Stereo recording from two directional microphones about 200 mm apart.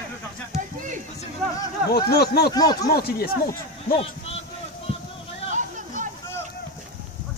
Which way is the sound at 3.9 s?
30° left (ahead or behind).